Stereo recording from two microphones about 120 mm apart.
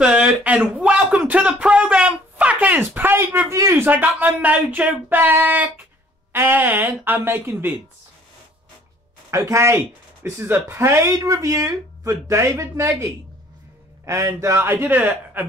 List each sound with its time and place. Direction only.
0.0 s speech: 10° right (ahead or behind)
9.3 s speech: 25° right (ahead or behind)